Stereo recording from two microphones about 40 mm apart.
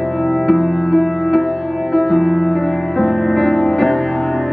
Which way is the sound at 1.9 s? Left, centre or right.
Centre.